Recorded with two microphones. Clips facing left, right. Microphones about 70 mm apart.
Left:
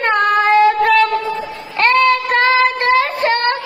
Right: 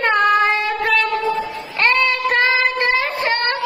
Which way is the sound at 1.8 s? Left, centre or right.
Left.